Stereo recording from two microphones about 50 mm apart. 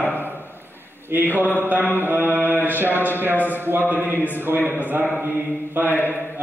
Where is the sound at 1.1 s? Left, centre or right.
Right.